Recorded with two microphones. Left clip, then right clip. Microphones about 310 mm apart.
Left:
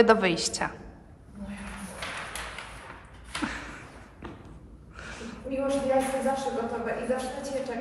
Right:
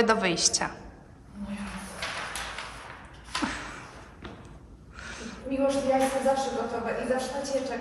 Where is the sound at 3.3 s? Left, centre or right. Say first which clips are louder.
Right 2 dB; centre.